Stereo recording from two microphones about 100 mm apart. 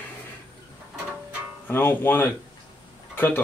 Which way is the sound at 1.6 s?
20° left (ahead or behind).